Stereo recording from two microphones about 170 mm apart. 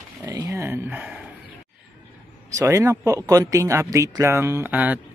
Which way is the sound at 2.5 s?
15° right (ahead or behind).